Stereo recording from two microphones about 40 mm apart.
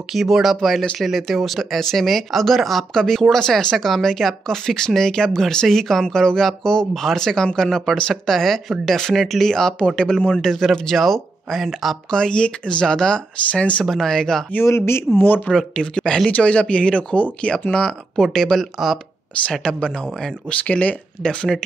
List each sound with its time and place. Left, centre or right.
0.1 s speech: centre
0.6 s speech: centre
6.9 s speech: centre
7.2 s speech: centre
10.6 s speech: centre
12.1 s speech: centre
13.5 s speech: left
13.8 s speech: centre
14.6 s speech: left
15.1 s speech: left
15.5 s speech: centre
16.3 s speech: left; by 18.9 s centre
20.6 s speech: left